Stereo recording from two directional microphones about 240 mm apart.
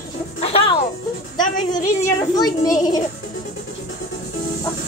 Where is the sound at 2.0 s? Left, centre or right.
Centre.